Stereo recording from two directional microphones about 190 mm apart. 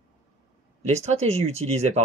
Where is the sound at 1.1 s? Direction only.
35° right (ahead or behind).